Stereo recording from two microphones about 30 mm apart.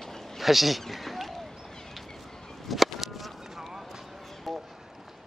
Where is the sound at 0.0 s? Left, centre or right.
Centre.